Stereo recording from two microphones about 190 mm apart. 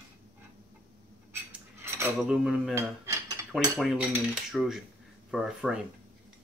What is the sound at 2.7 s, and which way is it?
Cutlery, 15° right (ahead or behind).